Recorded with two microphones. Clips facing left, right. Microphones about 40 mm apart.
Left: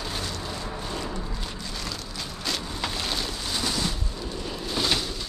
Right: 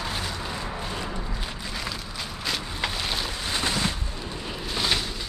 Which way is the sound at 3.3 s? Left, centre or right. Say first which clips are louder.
Right 2 dB; right.